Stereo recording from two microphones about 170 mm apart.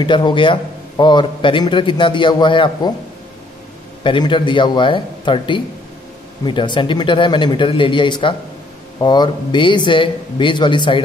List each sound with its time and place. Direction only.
0.0 s a man's voice: 30° left (ahead or behind)
4.0 s a man's voice: 30° left (ahead or behind)